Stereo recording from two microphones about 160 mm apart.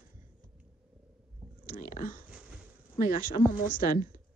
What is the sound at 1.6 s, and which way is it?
Speech, 60° left (ahead or behind).